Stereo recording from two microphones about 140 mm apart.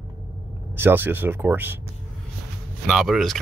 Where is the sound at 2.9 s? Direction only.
Centre (ahead or behind).